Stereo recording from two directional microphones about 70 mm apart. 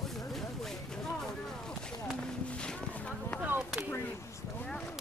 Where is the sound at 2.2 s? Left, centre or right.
Centre.